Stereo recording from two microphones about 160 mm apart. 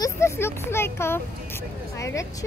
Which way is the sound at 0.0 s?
15° left (ahead or behind).